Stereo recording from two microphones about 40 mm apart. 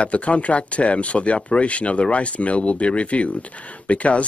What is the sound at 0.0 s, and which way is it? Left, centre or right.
Speech, left.